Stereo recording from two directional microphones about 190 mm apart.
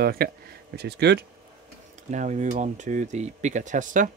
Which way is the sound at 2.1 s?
40° right (ahead or behind).